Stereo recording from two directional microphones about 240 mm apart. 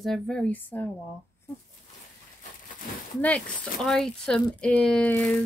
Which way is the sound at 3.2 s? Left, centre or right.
Centre.